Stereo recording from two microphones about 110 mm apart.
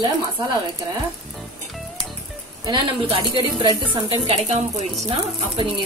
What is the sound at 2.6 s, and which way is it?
Speech, 45° right (ahead or behind).